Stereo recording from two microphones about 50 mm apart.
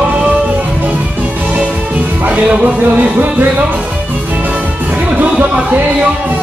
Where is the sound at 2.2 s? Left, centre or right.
Right.